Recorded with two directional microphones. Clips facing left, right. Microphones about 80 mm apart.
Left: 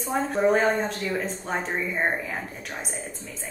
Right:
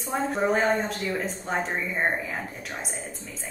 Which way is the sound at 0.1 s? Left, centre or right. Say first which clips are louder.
Left 2 dB; centre.